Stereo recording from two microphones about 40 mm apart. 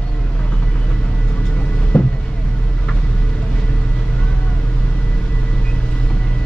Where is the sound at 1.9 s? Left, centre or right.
Left.